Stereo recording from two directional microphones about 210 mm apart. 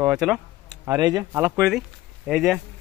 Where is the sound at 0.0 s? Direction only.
5° right (ahead or behind).